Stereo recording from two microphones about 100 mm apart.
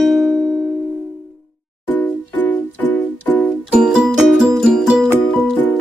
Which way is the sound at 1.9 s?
15° left (ahead or behind).